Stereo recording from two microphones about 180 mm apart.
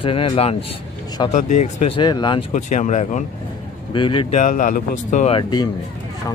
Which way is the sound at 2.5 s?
45° left (ahead or behind).